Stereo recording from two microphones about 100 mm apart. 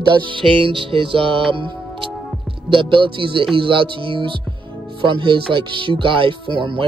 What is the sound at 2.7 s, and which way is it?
Speech, 60° right (ahead or behind).